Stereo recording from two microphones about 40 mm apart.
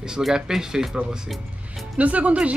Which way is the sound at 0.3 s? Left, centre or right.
Centre.